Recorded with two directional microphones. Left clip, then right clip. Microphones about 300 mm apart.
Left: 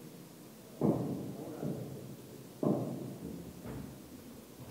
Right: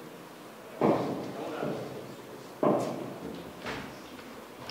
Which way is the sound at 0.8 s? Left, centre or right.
Centre.